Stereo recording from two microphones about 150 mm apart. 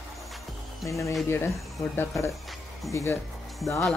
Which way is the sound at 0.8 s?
20° left (ahead or behind).